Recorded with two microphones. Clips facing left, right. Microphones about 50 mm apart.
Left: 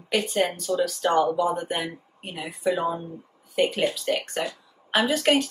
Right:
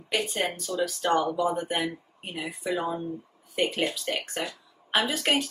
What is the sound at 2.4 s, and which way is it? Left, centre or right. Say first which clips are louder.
Speech: left 5 dB; left.